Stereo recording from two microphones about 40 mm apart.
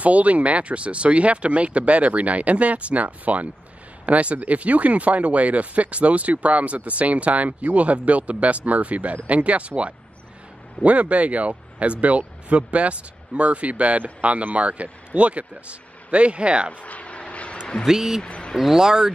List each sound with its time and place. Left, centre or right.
0.0 s speech: right
16.8 s a sound: left
17.8 s speech: centre
18.2 s speech: left
18.6 s speech: centre